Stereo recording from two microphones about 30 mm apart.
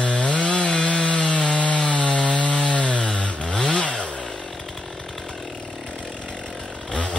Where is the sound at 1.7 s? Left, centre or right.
Left.